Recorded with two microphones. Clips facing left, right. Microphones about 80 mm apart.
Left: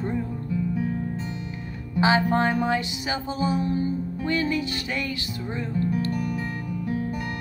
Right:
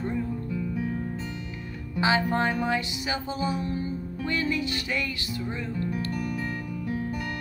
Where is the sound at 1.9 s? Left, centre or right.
Centre.